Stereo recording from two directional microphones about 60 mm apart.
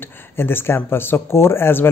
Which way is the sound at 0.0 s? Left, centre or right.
Left.